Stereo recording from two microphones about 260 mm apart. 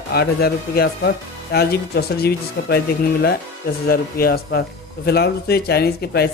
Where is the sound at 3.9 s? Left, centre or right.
Left.